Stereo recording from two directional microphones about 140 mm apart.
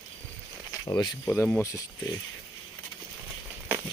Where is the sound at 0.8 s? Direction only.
25° left (ahead or behind).